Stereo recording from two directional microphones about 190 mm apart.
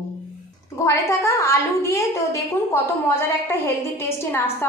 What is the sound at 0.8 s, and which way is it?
A woman's voice, 15° left (ahead or behind).